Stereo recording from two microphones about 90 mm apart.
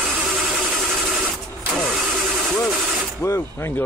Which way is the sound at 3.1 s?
25° left (ahead or behind).